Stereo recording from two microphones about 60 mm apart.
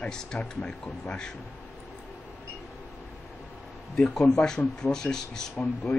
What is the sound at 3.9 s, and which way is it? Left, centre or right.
Speech, centre.